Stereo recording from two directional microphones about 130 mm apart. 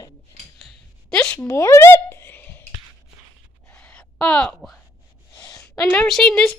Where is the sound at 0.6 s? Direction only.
5° left (ahead or behind).